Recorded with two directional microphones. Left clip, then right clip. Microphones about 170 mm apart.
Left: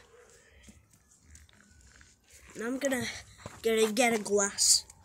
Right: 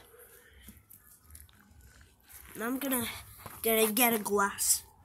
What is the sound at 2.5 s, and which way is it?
Speech, 5° right (ahead or behind).